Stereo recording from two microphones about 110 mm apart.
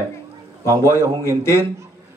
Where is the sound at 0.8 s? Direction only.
25° left (ahead or behind).